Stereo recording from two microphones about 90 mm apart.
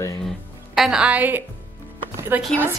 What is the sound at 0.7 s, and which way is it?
A woman's voice, 5° right (ahead or behind).